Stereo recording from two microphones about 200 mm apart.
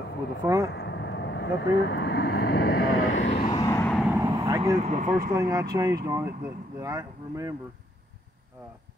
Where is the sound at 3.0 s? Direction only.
75° left (ahead or behind).